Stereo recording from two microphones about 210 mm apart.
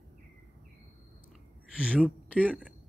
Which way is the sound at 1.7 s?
5° right (ahead or behind).